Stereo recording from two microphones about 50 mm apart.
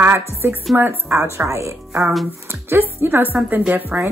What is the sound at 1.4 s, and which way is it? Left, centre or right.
Speech, right.